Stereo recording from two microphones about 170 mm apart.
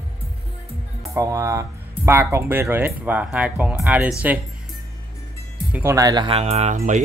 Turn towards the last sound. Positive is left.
turn(degrees=-45)  # may be behind; listen again after turning